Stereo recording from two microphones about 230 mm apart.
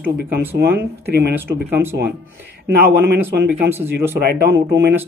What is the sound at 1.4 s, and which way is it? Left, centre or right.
Speech, centre.